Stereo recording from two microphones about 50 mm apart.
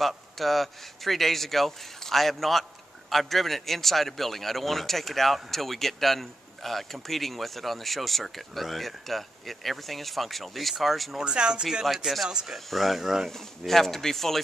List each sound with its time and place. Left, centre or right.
0.0 s a man's voice: centre
11.1 s speech: centre
11.6 s a man's voice: centre
12.3 s speech: centre
12.5 s a man's voice: centre
13.3 s a man's voice: centre